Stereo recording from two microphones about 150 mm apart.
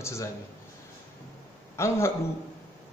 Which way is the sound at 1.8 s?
20° left (ahead or behind).